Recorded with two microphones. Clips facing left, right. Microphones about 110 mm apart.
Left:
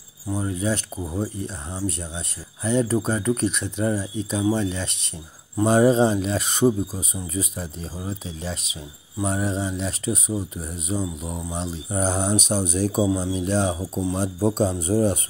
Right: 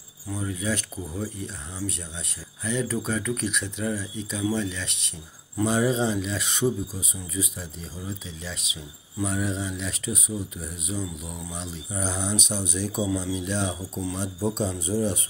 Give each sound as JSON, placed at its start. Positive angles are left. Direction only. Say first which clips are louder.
{"t": 0.3, "sound": "speech", "louder": "left 4 dB", "side_deg": 35}